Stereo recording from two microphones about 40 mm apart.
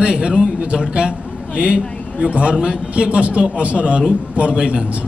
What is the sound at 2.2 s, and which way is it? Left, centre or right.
Speech, right.